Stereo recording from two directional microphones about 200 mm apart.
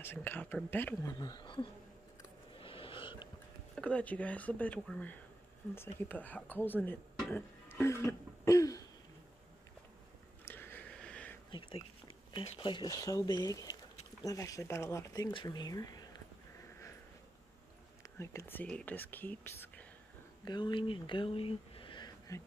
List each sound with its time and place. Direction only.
0.0 s speech: 10° left (ahead or behind)
2.5 s a sound: 25° left (ahead or behind)
3.7 s speech: 5° left (ahead or behind)
10.4 s a sound: 10° left (ahead or behind)
12.3 s speech: 25° left (ahead or behind)
18.0 s speech: 15° left (ahead or behind)
20.4 s speech: 20° left (ahead or behind)